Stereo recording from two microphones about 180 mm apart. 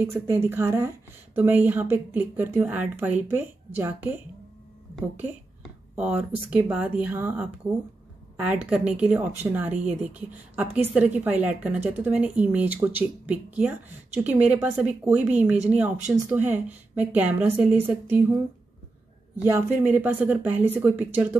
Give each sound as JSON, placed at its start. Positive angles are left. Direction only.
{"t": 0.0, "sound": "a woman's voice", "side_deg": -15}
{"t": 5.6, "sound": "a woman's voice", "side_deg": -5}
{"t": 9.7, "sound": "a woman's voice", "side_deg": -45}
{"t": 10.0, "sound": "a woman's voice", "side_deg": -10}
{"t": 19.4, "sound": "a woman's voice", "side_deg": -10}